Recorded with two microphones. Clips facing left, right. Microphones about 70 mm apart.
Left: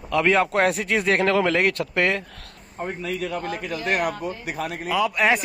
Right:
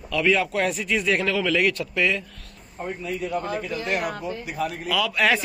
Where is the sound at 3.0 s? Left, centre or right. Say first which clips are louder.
Left 1 dB; left.